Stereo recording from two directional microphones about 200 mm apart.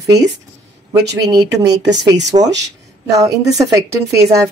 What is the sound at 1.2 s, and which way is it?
Speech, 20° right (ahead or behind).